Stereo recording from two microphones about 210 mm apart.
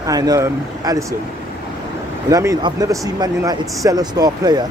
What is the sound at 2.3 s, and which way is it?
Speech, 15° right (ahead or behind).